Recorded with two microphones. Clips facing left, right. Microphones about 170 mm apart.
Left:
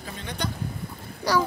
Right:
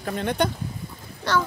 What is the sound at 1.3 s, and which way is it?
Speech, 10° left (ahead or behind).